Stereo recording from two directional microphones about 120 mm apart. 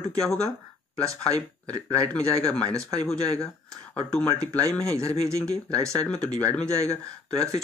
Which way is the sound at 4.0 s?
5° left (ahead or behind).